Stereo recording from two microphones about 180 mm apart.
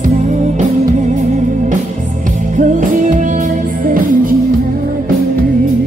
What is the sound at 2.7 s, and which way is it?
Music, 45° right (ahead or behind).